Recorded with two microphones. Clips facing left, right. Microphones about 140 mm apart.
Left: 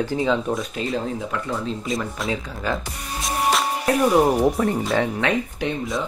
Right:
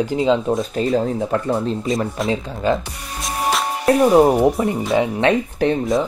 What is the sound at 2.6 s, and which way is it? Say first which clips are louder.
Speech: right 7 dB; 25° right (ahead or behind).